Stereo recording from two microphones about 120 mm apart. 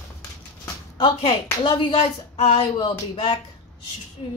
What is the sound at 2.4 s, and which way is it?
Speech, 50° left (ahead or behind).